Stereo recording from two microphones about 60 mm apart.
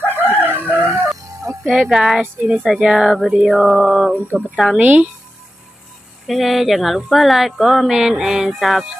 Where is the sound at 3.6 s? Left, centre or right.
Centre.